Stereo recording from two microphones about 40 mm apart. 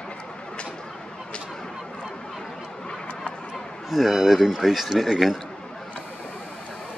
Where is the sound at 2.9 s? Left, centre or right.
Left.